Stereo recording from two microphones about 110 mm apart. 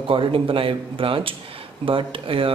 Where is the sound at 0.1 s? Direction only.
55° right (ahead or behind).